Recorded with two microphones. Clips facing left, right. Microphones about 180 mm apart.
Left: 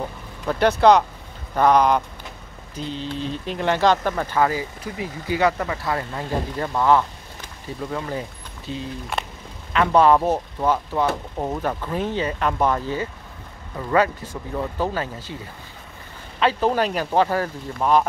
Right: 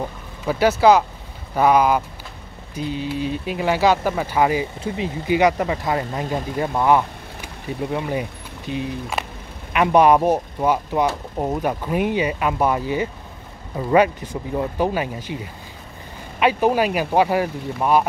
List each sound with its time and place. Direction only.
0.5 s speech: 5° right (ahead or behind)